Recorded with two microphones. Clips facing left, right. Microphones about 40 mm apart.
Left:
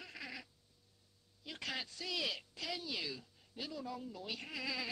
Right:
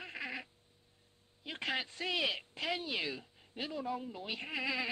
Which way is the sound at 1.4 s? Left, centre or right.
Right.